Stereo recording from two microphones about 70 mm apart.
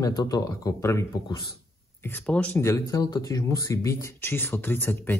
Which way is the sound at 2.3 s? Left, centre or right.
Centre.